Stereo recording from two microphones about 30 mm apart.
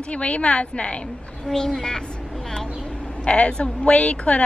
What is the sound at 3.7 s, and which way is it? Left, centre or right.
Speech, left.